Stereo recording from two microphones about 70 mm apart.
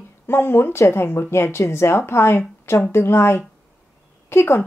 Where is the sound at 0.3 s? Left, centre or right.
Left.